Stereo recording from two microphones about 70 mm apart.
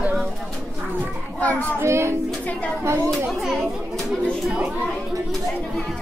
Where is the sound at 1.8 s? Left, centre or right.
Right.